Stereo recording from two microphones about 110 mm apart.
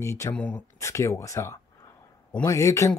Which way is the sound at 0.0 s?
25° left (ahead or behind).